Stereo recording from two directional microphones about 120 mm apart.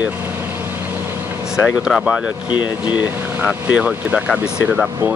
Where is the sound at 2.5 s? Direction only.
40° left (ahead or behind).